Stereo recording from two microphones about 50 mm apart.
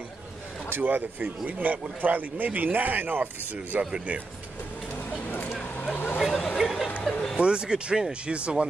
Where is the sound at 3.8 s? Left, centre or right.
Right.